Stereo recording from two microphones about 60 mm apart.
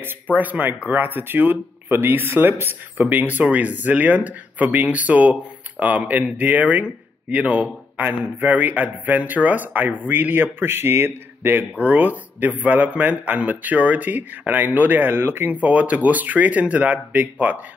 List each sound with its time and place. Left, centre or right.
0.3 s a man's voice: right
11.8 s speech: right
15.5 s speech: right